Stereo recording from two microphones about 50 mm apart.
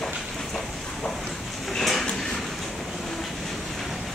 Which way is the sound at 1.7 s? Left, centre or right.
Centre.